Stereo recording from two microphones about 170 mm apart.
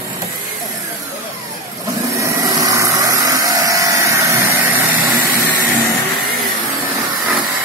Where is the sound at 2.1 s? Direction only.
25° right (ahead or behind).